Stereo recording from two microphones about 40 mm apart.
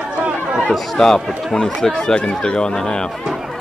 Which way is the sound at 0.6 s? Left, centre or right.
Centre.